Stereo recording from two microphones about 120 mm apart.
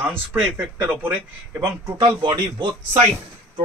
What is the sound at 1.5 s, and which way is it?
A man's voice, 35° right (ahead or behind).